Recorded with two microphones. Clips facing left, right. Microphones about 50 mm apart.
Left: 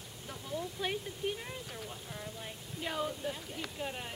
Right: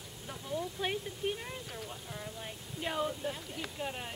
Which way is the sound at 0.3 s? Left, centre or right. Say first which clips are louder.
Right 2 dB; centre.